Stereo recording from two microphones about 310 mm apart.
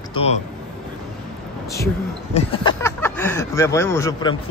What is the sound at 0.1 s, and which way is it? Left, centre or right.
Speech, centre.